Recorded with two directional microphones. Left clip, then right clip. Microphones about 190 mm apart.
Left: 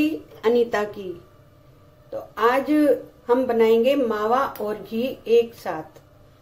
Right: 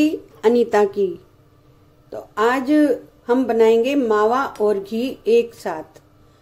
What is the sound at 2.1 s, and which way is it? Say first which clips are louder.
A woman's voice: right 2 dB; 50° right (ahead or behind).